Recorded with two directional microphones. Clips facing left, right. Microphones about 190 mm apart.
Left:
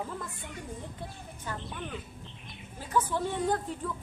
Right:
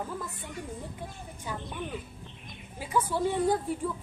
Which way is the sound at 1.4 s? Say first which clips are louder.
Right 2 dB; 10° right (ahead or behind).